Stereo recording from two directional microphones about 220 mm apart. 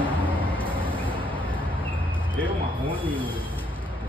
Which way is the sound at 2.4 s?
10° left (ahead or behind).